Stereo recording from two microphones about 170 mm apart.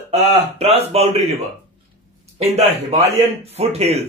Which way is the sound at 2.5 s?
40° right (ahead or behind).